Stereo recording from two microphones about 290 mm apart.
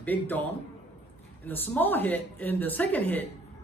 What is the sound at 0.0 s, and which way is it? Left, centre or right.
A woman's voice, centre.